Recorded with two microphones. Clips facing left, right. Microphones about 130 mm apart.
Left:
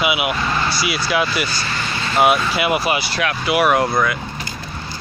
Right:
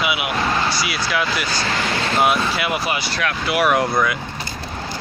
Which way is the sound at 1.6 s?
90° right.